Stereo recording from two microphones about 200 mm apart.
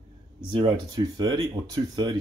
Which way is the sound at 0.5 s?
25° right (ahead or behind).